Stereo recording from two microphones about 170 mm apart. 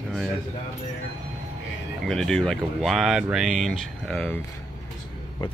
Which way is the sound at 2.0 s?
5° left (ahead or behind).